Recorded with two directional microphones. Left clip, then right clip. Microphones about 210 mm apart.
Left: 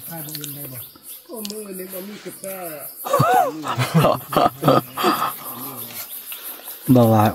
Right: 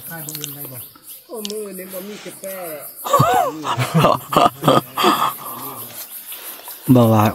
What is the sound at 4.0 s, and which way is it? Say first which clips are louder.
Speech: right 3 dB; 15° right (ahead or behind).